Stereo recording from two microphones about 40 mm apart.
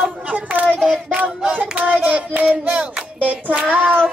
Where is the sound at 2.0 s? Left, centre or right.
Right.